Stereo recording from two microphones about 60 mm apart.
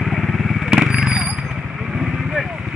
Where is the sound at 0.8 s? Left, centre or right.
Centre.